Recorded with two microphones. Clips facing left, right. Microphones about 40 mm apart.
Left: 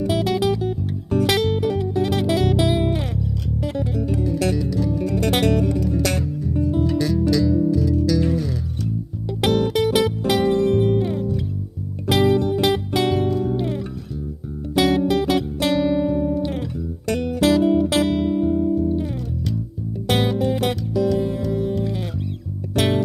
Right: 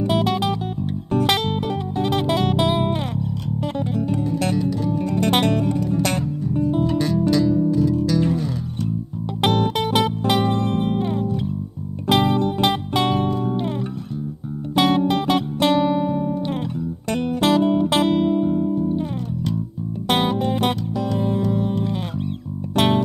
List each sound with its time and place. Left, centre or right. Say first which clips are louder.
0.0 s music: even; centre
4.1 s music: left 2 dB; centre
12.1 s music: left 1 dB; centre
14.8 s guitar: even; centre
17.1 s music: left 1 dB; centre